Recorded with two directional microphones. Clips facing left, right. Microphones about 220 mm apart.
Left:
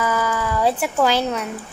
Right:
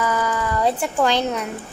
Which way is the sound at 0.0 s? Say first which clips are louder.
Even; 5° left (ahead or behind).